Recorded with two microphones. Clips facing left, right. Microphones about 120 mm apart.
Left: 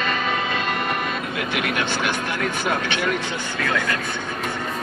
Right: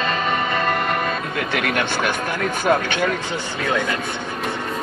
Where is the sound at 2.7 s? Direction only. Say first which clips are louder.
Right 8 dB; 45° right (ahead or behind).